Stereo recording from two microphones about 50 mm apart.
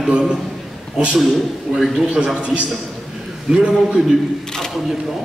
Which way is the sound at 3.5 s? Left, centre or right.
Centre.